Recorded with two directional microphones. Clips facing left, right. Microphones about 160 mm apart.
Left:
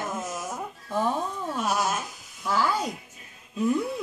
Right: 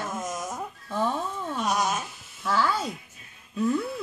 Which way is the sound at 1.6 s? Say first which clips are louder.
Even; 5° left (ahead or behind).